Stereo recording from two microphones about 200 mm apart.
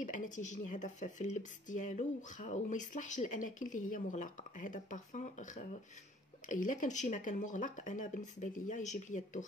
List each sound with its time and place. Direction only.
0.0 s speech: 40° left (ahead or behind)